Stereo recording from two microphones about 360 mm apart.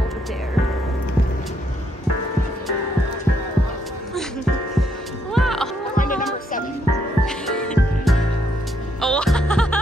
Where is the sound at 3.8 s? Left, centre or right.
Centre.